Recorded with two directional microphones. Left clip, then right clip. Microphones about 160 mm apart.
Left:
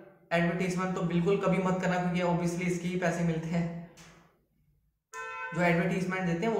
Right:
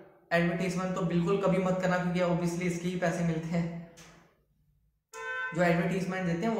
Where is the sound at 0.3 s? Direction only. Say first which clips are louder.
Even; 10° left (ahead or behind).